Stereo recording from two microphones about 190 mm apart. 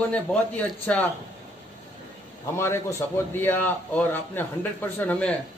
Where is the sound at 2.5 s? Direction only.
15° left (ahead or behind).